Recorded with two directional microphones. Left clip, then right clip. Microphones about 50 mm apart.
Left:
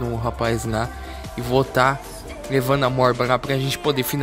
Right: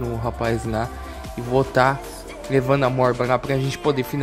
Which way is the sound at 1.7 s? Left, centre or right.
Right.